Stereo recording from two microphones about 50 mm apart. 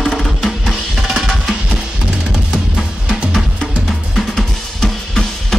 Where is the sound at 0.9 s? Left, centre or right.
Centre.